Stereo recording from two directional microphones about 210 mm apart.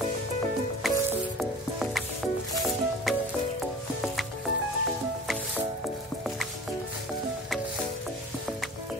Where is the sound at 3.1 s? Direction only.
Centre (ahead or behind).